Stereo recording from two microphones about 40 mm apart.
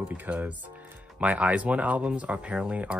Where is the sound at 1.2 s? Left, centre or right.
Right.